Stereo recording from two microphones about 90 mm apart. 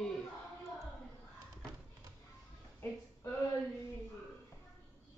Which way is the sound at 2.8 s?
25° left (ahead or behind).